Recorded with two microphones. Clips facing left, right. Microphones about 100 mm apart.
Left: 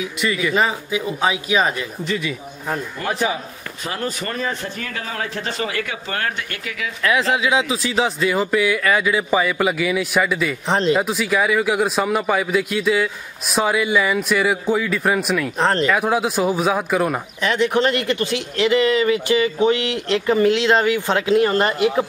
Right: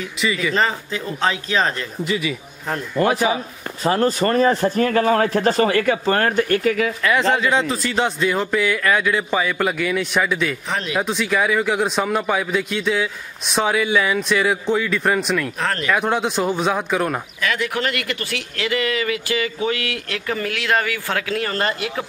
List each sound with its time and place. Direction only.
0.0 s speech: centre (ahead or behind)
2.0 s a man's voice: 5° right (ahead or behind)
3.8 s speech: 35° right (ahead or behind)
7.0 s a man's voice: centre (ahead or behind)
10.7 s speech: 30° left (ahead or behind)
11.0 s a man's voice: 5° left (ahead or behind)
15.6 s speech: 25° left (ahead or behind)
15.9 s a man's voice: 5° left (ahead or behind)
17.4 s speech: 25° left (ahead or behind)